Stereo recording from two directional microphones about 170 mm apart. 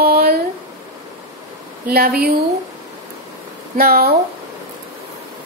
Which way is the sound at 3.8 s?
65° right (ahead or behind).